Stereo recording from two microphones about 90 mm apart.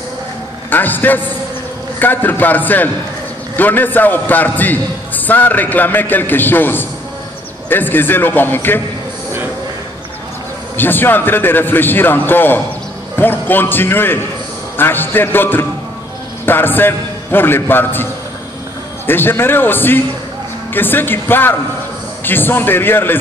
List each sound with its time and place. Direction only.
0.7 s a man's voice: 20° left (ahead or behind)
10.8 s a man's voice: 20° left (ahead or behind)
19.0 s a man's voice: 25° left (ahead or behind)